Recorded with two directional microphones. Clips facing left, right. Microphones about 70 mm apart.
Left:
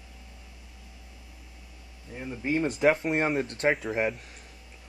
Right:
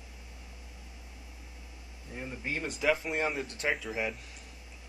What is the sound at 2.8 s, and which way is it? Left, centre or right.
Speech, left.